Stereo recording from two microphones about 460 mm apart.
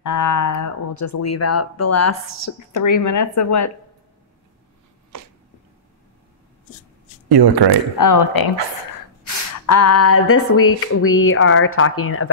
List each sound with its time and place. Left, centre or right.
0.0 s speech: left
7.2 s speech: right
8.0 s speech: left